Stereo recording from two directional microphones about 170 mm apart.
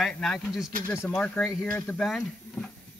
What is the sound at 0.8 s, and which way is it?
Speech, 15° left (ahead or behind).